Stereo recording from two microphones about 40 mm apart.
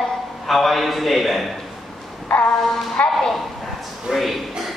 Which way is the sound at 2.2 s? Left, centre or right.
Left.